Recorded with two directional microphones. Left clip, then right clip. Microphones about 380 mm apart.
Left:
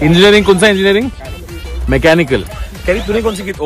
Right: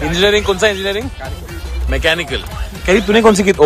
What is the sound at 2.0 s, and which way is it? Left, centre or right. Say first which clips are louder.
Speech: left 5 dB; centre.